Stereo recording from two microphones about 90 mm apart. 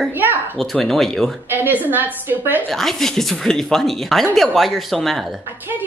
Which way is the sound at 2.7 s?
5° left (ahead or behind).